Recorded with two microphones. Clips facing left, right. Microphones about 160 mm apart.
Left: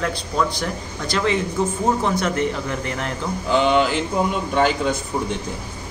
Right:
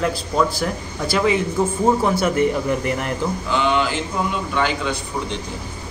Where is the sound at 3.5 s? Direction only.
40° left (ahead or behind).